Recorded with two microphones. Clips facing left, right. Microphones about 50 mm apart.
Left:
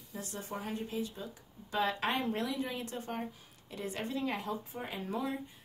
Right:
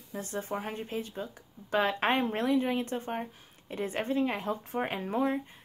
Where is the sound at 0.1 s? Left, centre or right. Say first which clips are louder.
Right 6 dB; right.